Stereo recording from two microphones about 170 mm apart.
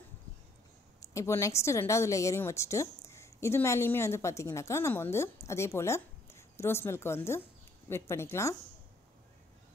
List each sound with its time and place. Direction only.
1.1 s a woman's voice: 15° left (ahead or behind)